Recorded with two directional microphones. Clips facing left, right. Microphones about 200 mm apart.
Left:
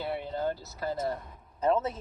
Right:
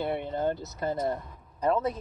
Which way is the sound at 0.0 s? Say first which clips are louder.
Right 3 dB; 20° right (ahead or behind).